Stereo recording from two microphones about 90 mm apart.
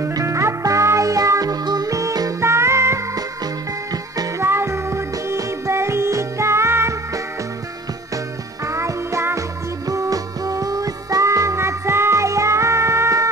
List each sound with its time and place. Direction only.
0.0 s music: 35° right (ahead or behind)
2.4 s music: 30° right (ahead or behind)
4.4 s music: 30° right (ahead or behind)
8.6 s music: 35° right (ahead or behind)